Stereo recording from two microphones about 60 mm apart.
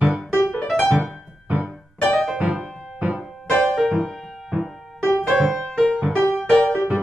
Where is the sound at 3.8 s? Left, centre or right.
Centre.